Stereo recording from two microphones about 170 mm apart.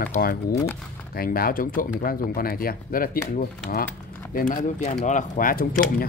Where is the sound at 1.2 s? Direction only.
60° left (ahead or behind).